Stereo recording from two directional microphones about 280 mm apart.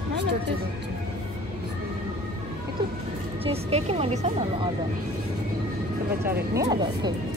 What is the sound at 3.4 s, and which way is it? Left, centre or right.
Speech, right.